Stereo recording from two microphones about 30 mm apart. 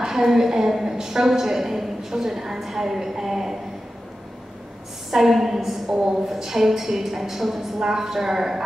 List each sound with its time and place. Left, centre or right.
0.0 s a woman's voice: centre
5.1 s a woman's voice: centre
5.9 s a woman's voice: right
6.2 s a woman's voice: centre
7.8 s a woman's voice: centre